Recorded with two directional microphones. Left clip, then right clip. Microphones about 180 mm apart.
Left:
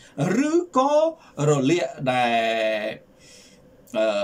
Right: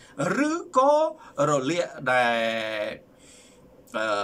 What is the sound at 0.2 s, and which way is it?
Speech, 15° left (ahead or behind).